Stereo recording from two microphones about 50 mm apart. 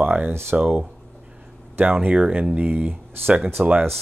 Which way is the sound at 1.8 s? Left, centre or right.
Right.